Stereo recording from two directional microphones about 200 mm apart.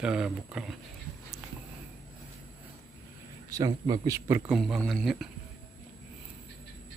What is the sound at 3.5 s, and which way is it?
Speech, 20° right (ahead or behind).